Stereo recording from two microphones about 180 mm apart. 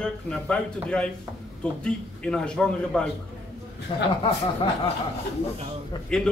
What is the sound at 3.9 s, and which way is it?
Speech, 30° left (ahead or behind).